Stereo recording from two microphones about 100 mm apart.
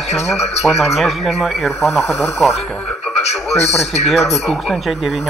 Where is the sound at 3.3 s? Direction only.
90° left.